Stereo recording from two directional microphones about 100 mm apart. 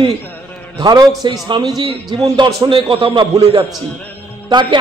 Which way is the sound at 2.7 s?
55° right (ahead or behind).